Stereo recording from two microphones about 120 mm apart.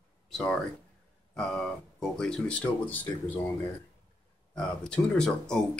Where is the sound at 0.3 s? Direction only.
5° left (ahead or behind).